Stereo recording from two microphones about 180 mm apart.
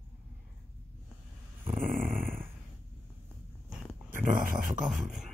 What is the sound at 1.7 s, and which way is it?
Dog, 50° right (ahead or behind).